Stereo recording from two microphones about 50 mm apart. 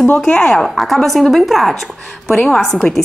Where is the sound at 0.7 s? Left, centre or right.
Centre.